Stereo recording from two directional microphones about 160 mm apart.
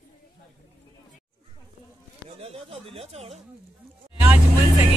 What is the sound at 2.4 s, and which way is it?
Speech, 40° right (ahead or behind).